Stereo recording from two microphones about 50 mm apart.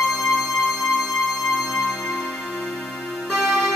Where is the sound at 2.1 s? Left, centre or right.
Centre.